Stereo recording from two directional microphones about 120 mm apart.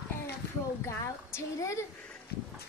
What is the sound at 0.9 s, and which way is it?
Speech, 25° left (ahead or behind).